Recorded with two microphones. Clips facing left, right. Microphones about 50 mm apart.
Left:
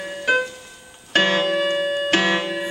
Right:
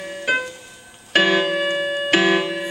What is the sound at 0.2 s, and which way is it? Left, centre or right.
Keyboard, centre.